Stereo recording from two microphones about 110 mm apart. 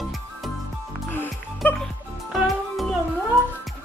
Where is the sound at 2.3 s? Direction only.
Centre (ahead or behind).